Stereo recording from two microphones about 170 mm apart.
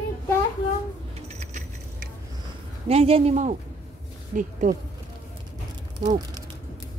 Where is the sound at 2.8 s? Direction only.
35° right (ahead or behind).